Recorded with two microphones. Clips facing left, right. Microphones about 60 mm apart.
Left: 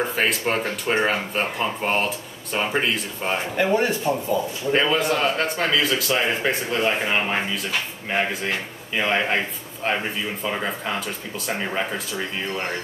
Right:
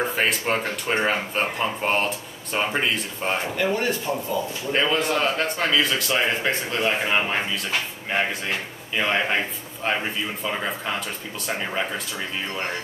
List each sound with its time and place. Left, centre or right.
0.0 s a man's voice: centre
3.5 s speech: left
4.7 s a man's voice: centre
10.4 s a man's voice: centre